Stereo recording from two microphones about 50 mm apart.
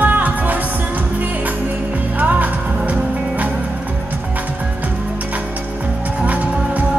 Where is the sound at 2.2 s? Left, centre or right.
Right.